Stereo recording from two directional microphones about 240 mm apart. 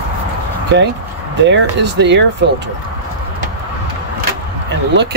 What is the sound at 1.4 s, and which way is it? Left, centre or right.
Speech, right.